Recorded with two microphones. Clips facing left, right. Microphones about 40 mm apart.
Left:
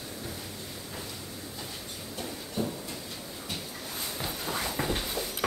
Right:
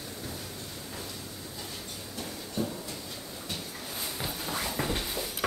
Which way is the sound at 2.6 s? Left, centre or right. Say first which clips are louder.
Left 1 dB; centre.